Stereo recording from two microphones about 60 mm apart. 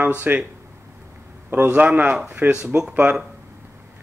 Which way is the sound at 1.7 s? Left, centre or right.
Right.